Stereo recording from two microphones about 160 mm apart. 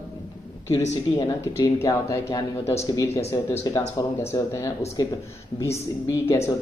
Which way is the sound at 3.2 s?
40° left (ahead or behind).